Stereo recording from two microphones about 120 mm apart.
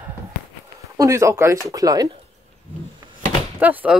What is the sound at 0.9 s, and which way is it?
Speech, 25° right (ahead or behind).